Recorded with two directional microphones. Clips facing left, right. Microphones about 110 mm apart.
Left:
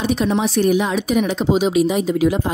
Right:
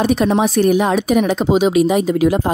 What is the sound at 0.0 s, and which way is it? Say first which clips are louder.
Speech: right 4 dB; 55° right (ahead or behind).